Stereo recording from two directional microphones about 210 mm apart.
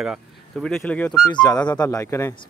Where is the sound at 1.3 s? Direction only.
20° left (ahead or behind).